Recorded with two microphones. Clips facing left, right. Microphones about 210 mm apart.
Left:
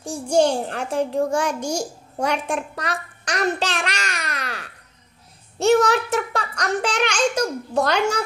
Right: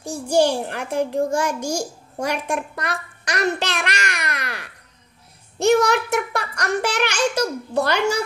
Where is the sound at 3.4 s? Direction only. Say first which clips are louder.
Even; 65° right (ahead or behind).